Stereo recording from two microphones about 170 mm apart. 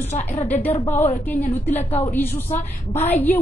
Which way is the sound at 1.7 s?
35° left (ahead or behind).